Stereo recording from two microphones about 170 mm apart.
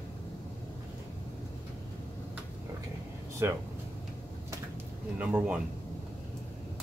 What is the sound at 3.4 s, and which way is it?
Speech, 15° right (ahead or behind).